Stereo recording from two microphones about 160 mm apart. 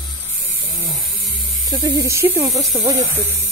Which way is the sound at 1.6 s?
25° right (ahead or behind).